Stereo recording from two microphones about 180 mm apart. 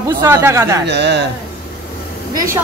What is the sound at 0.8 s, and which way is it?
Speech, 70° right (ahead or behind).